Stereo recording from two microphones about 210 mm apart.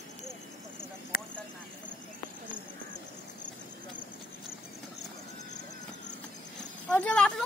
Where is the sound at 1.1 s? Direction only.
45° left (ahead or behind).